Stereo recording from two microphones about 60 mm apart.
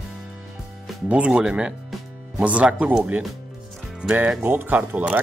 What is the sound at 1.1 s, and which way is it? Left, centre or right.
Speech, right.